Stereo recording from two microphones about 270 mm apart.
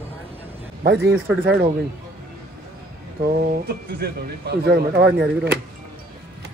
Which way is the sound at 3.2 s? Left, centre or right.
Right.